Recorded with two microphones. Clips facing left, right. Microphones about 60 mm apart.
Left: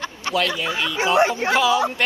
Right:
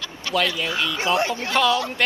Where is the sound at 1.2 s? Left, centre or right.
Left.